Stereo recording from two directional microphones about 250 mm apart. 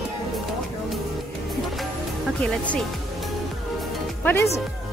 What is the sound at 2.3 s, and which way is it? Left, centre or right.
Speech, centre.